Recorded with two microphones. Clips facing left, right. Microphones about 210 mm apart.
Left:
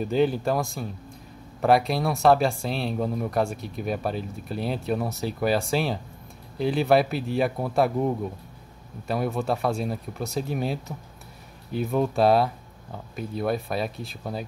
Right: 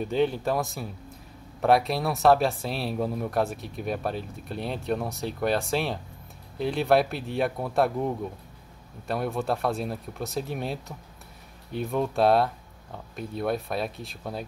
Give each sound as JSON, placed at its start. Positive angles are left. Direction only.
{"t": 0.0, "sound": "speech", "side_deg": 0}